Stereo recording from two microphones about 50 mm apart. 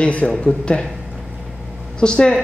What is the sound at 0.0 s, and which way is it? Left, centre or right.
Speech, left.